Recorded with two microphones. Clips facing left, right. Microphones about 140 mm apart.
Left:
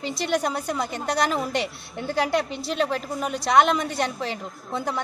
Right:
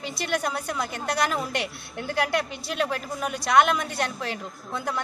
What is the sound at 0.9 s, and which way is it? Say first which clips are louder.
A woman's voice: left 2 dB; 5° right (ahead or behind).